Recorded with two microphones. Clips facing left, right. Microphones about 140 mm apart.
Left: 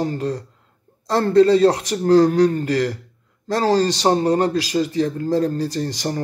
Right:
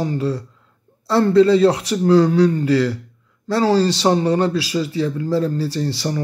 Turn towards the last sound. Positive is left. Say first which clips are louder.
# right 1 dB
turn(degrees=45)  # may be behind; listen again after turning